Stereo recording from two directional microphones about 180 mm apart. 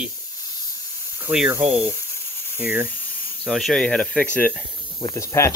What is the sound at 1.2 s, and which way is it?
Speech, 5° right (ahead or behind).